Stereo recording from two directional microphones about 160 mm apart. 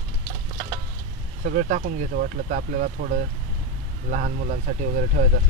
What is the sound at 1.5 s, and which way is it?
Speech, 55° right (ahead or behind).